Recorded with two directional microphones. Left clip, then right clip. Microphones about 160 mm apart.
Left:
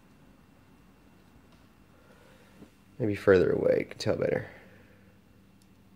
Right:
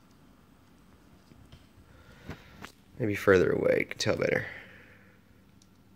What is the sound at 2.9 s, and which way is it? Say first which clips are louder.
Speech: left 1 dB; centre (ahead or behind).